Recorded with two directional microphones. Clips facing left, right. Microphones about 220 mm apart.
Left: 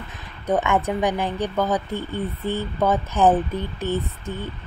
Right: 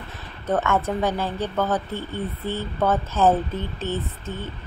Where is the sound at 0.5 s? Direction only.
15° left (ahead or behind).